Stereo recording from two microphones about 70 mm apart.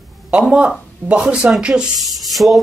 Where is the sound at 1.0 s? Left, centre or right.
Centre.